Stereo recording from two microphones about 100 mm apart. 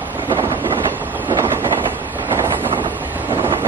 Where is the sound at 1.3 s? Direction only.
25° right (ahead or behind).